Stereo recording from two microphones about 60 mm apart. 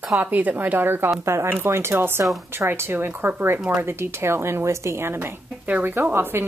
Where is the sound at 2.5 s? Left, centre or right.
Right.